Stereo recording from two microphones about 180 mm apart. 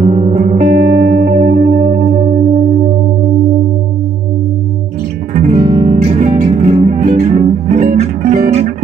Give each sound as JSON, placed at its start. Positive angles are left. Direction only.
{"t": 0.0, "sound": "music", "side_deg": -40}
{"t": 5.3, "sound": "music", "side_deg": -40}